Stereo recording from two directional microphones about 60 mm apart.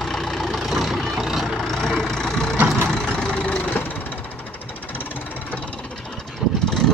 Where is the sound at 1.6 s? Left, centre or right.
Centre; by 4.0 s left.